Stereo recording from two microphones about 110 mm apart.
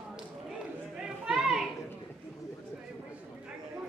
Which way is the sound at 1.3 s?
5° right (ahead or behind).